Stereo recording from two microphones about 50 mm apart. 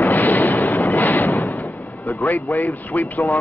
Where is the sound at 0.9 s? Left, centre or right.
Left.